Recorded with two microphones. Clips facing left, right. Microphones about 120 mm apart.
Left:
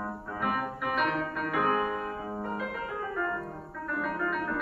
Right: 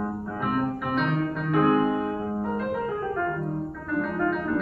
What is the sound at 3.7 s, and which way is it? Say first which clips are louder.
Music: right 5 dB; centre (ahead or behind).